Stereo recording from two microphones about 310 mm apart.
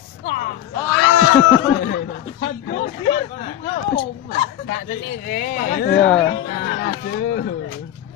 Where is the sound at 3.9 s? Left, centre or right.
Left.